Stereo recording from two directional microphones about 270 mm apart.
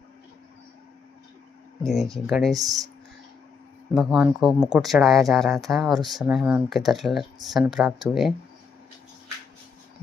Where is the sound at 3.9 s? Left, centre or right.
Centre.